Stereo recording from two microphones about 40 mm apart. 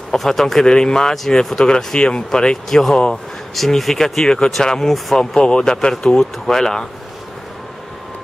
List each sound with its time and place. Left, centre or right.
0.1 s speech: centre
0.7 s speech: centre